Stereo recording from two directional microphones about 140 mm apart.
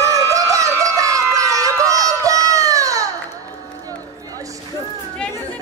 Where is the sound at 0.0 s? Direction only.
25° right (ahead or behind).